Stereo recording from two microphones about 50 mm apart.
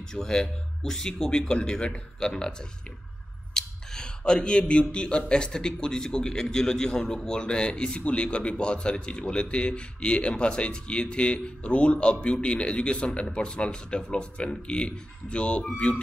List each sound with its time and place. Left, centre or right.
0.1 s speech: centre
3.5 s a sound: centre
4.9 s speech: centre